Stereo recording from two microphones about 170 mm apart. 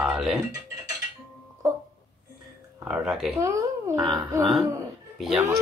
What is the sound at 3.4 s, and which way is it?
Speech, 15° right (ahead or behind).